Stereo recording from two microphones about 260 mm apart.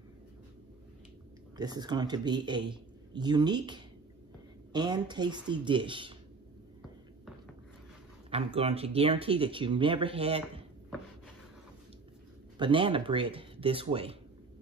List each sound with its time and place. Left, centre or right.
1.6 s a man's voice: centre
8.3 s speech: right
12.5 s speech: centre